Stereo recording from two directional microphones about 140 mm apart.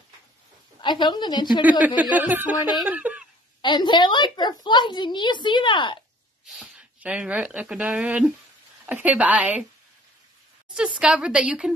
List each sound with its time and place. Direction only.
0.7 s a woman's voice: 30° left (ahead or behind)
1.6 s a woman's voice: 10° right (ahead or behind)
3.6 s a woman's voice: 35° left (ahead or behind)
6.4 s a woman's voice: 5° right (ahead or behind)
10.7 s a woman's voice: 5° right (ahead or behind)